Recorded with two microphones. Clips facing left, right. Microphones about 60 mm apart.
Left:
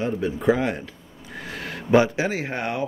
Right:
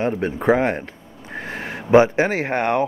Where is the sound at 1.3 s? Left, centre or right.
Right.